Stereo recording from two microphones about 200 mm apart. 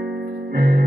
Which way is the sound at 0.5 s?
50° right (ahead or behind).